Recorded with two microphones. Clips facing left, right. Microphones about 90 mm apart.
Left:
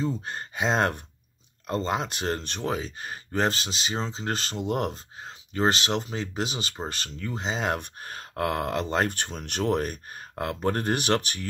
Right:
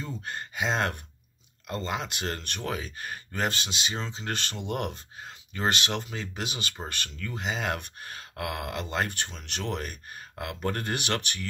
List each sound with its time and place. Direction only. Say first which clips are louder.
0.0 s speech: left 6 dB; 30° left (ahead or behind)